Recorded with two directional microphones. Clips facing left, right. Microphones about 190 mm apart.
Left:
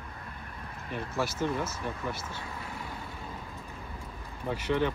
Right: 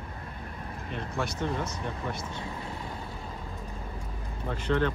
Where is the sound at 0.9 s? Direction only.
5° left (ahead or behind).